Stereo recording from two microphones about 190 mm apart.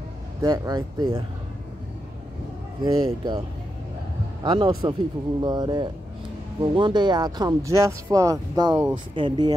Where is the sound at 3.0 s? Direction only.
25° right (ahead or behind).